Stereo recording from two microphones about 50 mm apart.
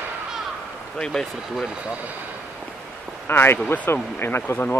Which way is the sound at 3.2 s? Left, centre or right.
Left.